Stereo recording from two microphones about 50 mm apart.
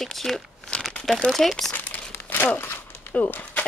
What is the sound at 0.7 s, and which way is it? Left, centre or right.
Crumpling, left.